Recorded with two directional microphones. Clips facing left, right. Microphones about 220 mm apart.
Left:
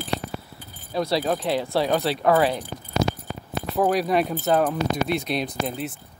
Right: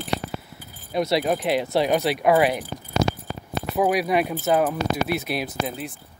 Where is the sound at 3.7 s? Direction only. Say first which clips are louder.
Even; 5° right (ahead or behind).